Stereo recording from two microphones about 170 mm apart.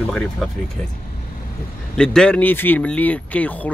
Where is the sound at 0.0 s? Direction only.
5° left (ahead or behind).